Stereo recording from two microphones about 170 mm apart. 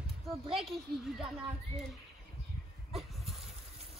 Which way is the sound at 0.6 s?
Centre (ahead or behind).